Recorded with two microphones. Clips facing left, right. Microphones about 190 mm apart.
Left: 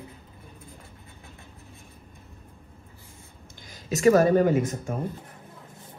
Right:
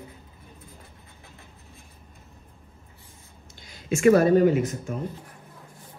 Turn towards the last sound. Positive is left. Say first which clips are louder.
# right 1 dB
turn(degrees=50)  # may be behind; listen again after turning